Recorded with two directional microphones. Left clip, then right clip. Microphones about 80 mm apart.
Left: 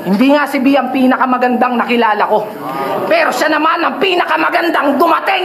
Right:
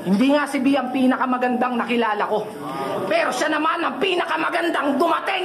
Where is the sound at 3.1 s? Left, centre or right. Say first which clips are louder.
Left 9 dB; left.